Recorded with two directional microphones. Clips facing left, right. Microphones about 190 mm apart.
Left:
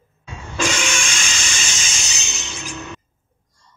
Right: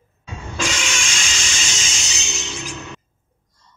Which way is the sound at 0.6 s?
55° left (ahead or behind).